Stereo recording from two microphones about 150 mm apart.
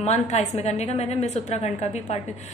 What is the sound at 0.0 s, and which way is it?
A woman's voice, 50° left (ahead or behind).